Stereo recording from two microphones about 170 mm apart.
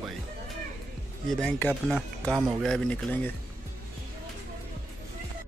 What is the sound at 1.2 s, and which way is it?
Speech, 5° left (ahead or behind).